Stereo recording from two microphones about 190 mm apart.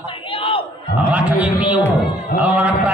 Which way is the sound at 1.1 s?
10° right (ahead or behind).